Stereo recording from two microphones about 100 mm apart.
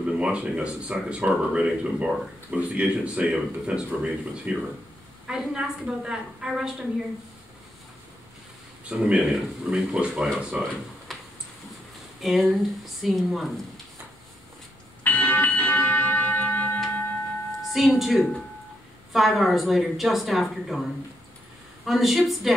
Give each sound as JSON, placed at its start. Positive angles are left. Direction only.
{"t": 0.0, "sound": "speech", "side_deg": -10}
{"t": 8.8, "sound": "speech", "side_deg": -10}
{"t": 12.2, "sound": "speech", "side_deg": 0}
{"t": 15.0, "sound": "music", "side_deg": 15}
{"t": 17.6, "sound": "a woman's voice", "side_deg": 0}